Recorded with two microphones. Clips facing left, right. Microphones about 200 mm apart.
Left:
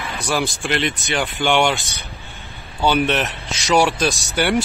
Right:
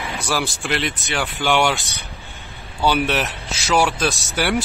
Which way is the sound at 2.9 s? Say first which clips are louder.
Left 3 dB; 5° right (ahead or behind).